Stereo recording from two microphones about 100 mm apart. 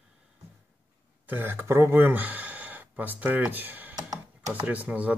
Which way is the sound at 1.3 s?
20° right (ahead or behind).